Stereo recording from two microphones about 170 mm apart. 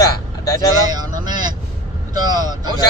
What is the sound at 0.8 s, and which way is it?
Speech, 25° right (ahead or behind).